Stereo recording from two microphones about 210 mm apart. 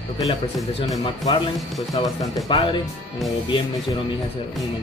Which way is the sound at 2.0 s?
25° left (ahead or behind).